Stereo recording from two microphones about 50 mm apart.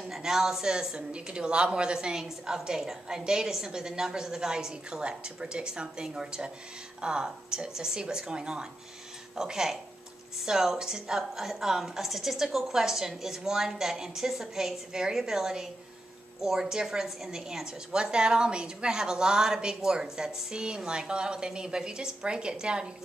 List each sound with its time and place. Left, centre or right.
0.1 s a woman's voice: centre